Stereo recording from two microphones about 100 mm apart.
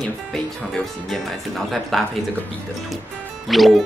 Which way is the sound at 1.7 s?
Centre (ahead or behind).